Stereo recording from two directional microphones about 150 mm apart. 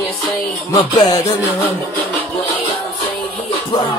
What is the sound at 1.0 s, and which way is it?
Music, 25° left (ahead or behind).